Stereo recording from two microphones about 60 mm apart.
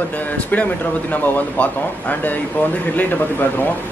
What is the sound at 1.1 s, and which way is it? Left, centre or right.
Speech, left.